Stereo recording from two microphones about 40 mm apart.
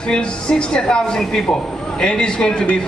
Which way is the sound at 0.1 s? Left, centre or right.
Left.